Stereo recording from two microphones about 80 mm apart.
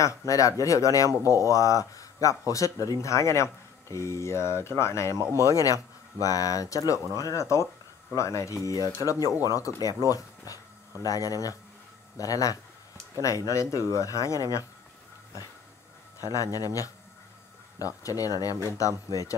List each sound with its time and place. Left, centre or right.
0.3 s speech: left
16.5 s speech: left